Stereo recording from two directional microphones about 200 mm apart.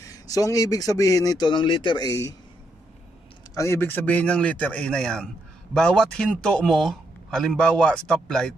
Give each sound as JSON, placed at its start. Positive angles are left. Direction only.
{"t": 0.0, "sound": "a man's voice", "side_deg": 15}
{"t": 3.5, "sound": "a man's voice", "side_deg": 15}